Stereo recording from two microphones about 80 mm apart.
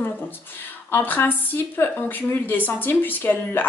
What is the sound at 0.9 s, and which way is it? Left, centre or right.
A woman's voice, left.